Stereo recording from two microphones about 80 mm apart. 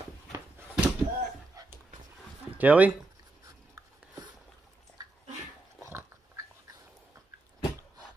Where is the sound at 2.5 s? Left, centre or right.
Centre.